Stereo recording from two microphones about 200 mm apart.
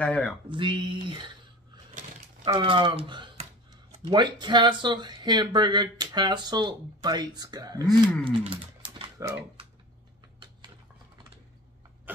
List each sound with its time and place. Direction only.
0.0 s speech: 5° left (ahead or behind)
0.5 s speech: 25° right (ahead or behind)
2.4 s speech: 25° right (ahead or behind)
8.3 s typing: 25° right (ahead or behind)